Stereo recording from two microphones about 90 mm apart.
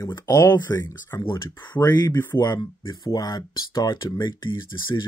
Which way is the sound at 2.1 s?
30° left (ahead or behind).